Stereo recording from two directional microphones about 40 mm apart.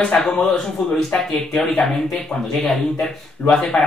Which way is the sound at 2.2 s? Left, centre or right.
Centre.